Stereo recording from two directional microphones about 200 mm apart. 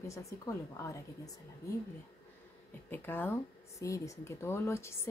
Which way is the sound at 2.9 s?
10° left (ahead or behind).